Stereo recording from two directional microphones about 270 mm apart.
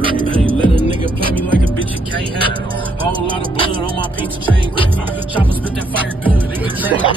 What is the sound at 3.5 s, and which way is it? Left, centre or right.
Music, centre.